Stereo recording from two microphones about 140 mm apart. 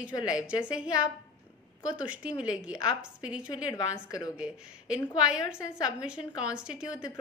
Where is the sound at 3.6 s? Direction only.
30° left (ahead or behind).